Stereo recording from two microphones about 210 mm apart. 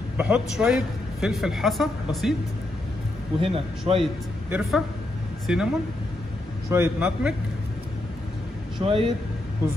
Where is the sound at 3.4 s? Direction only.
25° right (ahead or behind).